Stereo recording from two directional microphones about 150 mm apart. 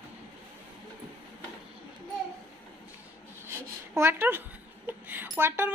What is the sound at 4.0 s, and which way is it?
A woman's voice, 15° right (ahead or behind).